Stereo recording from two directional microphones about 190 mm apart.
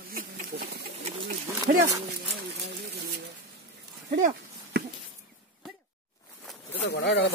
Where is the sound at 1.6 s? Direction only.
20° right (ahead or behind).